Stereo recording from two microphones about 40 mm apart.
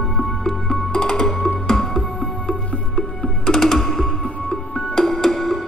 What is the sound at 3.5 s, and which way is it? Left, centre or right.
Music, centre.